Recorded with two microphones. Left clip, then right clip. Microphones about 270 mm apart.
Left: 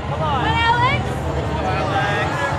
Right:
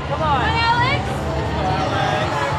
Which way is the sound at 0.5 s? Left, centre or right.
Left.